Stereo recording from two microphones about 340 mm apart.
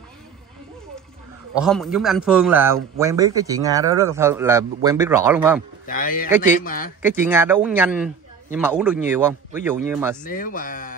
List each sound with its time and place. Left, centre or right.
1.5 s a man's voice: centre
5.9 s a man's voice: left
7.0 s a man's voice: centre
10.2 s speech: left